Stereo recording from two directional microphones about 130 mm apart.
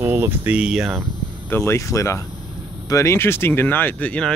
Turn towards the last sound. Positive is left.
turn(degrees=10)  # may be behind; listen again after turning